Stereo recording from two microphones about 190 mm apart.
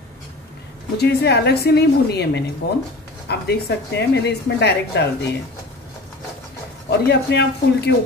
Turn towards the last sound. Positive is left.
turn(degrees=60)  # may be behind; listen again after turning